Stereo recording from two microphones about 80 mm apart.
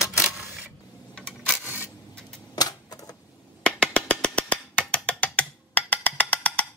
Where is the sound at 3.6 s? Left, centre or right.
Centre.